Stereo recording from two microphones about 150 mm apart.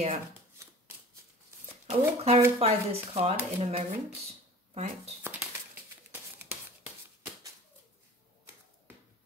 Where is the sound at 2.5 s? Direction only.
40° right (ahead or behind).